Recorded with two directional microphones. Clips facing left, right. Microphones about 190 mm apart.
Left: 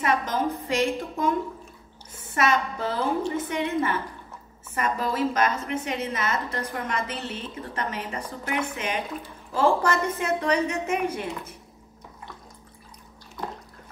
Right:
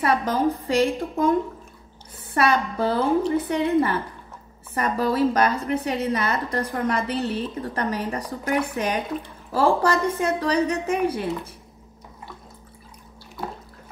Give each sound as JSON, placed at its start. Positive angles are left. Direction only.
{"t": 0.0, "sound": "a woman's voice", "side_deg": -35}